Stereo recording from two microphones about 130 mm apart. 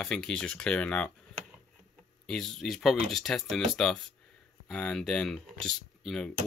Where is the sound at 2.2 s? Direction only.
5° left (ahead or behind).